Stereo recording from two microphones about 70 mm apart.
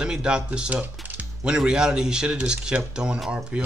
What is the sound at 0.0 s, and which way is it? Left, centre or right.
Speech, centre.